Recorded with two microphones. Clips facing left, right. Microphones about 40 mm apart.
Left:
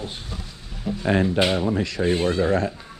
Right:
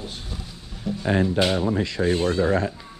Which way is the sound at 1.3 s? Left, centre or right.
Centre.